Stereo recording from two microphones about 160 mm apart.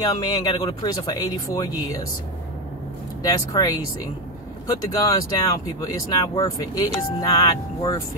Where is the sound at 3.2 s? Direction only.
25° left (ahead or behind).